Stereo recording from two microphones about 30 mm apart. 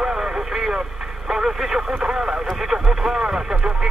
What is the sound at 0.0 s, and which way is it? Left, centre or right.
Vehicle, right.